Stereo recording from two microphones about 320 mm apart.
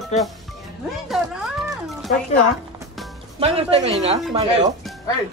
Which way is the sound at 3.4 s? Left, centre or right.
Centre.